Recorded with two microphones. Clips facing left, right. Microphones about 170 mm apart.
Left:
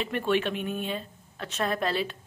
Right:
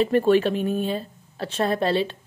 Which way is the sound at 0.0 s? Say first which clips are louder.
Right 9 dB; 35° right (ahead or behind).